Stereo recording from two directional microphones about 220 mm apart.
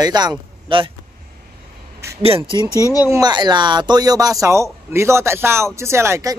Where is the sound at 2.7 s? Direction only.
15° left (ahead or behind).